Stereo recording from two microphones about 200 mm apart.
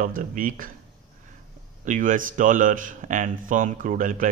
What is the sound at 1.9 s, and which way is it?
A man's voice, 40° right (ahead or behind).